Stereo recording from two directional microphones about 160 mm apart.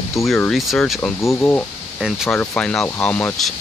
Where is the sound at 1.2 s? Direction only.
15° left (ahead or behind).